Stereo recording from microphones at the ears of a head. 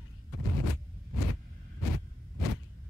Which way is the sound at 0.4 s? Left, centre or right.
Left.